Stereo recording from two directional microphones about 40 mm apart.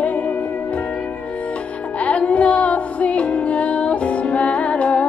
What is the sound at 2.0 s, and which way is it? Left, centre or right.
Music, left.